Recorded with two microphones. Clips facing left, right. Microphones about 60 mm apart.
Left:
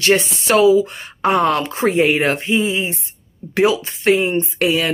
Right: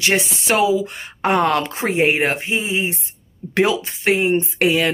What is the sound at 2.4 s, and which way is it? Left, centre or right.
Speech, right.